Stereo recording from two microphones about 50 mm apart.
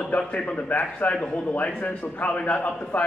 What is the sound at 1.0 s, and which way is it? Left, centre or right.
A man's voice, left.